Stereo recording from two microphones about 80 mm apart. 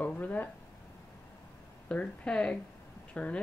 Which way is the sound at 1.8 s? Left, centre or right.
Centre.